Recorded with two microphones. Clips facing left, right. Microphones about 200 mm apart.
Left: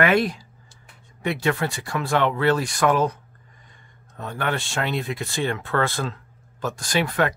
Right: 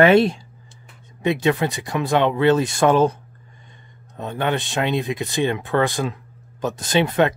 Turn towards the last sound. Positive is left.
turn(degrees=-20)  # may be behind; listen again after turning